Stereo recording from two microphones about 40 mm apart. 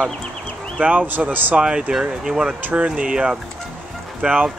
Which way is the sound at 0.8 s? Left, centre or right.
Right.